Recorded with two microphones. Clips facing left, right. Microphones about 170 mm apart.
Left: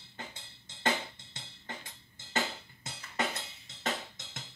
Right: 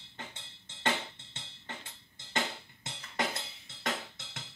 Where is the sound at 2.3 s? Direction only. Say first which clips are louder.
Left 1 dB; 5° left (ahead or behind).